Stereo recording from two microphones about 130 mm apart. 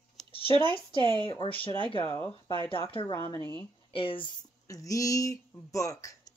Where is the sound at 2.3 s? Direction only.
40° left (ahead or behind).